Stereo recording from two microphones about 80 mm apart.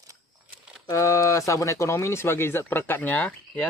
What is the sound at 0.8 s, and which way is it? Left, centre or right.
Speech, left.